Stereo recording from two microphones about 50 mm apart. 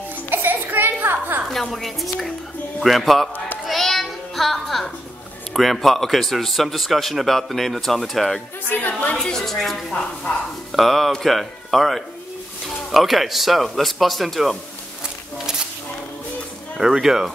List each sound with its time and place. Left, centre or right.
0.3 s music: right
1.5 s a man's voice: centre
3.6 s music: centre
5.5 s a man's voice: centre
8.6 s a woman's voice: left
9.1 s a woman's voice: centre
16.7 s speech: centre